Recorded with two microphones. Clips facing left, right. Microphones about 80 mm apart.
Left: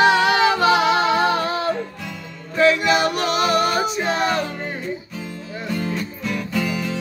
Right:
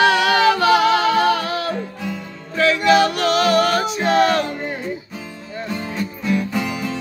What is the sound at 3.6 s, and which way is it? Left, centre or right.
Music, centre.